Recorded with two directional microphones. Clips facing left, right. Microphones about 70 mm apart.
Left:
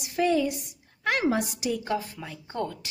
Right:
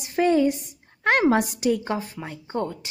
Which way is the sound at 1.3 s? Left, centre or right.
Right.